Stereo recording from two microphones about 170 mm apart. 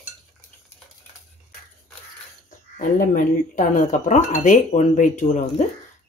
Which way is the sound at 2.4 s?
50° left (ahead or behind).